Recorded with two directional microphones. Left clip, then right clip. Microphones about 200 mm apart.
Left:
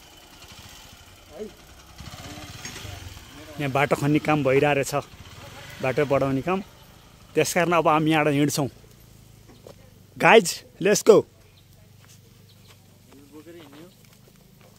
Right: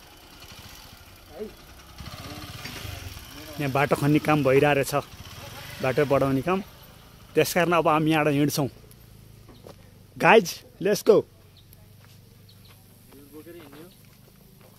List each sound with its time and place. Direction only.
0.2 s vehicle: 10° left (ahead or behind)
2.8 s vehicle: 35° right (ahead or behind)
3.5 s speech: 5° left (ahead or behind)
5.1 s vehicle: 50° right (ahead or behind)
5.8 s speech: centre (ahead or behind)
10.1 s speech: 15° left (ahead or behind)
10.4 s speech: 25° left (ahead or behind)